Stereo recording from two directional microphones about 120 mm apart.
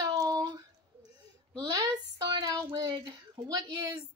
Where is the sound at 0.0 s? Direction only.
35° right (ahead or behind).